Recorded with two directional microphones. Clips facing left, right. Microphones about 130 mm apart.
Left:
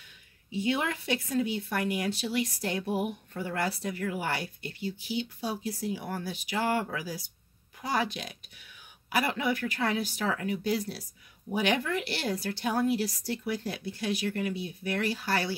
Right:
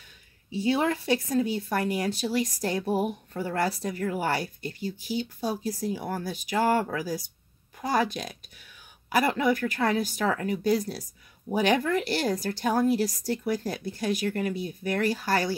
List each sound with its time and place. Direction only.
0.5 s speech: 35° right (ahead or behind)